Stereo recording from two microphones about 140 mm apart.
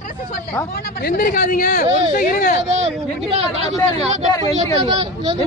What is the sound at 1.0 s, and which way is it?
Speech, 85° left.